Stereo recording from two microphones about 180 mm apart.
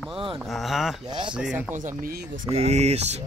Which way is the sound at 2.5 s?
35° right (ahead or behind).